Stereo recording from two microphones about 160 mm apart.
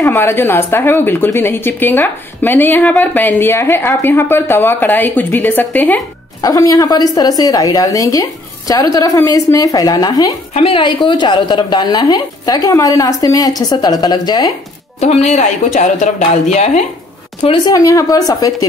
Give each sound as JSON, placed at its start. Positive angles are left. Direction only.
{"t": 0.0, "sound": "speech", "side_deg": 15}
{"t": 6.4, "sound": "a woman's voice", "side_deg": 20}
{"t": 10.5, "sound": "a woman's voice", "side_deg": 35}
{"t": 15.2, "sound": "speech", "side_deg": 50}
{"t": 17.6, "sound": "a woman's voice", "side_deg": 20}